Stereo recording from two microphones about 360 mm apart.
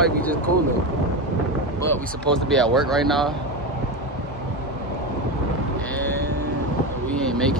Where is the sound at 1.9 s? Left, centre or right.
Centre.